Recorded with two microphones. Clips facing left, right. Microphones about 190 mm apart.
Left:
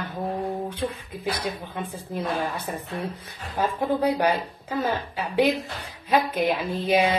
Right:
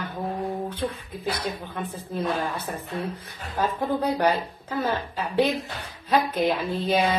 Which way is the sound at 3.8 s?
10° left (ahead or behind).